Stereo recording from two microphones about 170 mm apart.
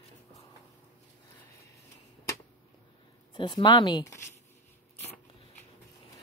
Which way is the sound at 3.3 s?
25° left (ahead or behind).